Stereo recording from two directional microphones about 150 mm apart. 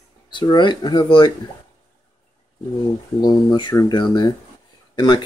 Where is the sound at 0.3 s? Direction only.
30° left (ahead or behind).